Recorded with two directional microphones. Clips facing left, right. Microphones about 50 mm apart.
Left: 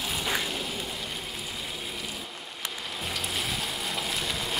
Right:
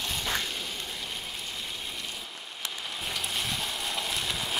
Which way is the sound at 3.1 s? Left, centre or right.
Centre.